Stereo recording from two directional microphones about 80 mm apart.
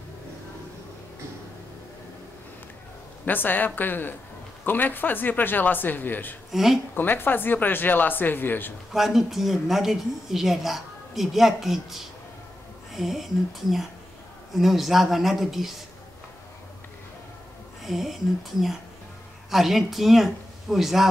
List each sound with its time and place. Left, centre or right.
3.3 s speech: left
6.5 s speech: centre
7.0 s speech: left
8.9 s speech: centre
17.8 s speech: centre
19.5 s speech: centre